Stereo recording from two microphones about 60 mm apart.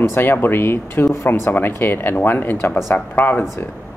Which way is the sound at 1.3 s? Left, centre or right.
Left.